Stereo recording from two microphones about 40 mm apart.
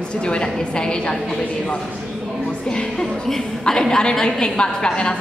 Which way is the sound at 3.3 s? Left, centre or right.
Centre.